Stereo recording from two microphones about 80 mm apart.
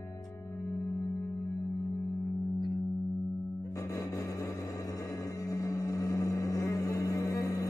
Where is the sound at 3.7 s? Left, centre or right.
Left.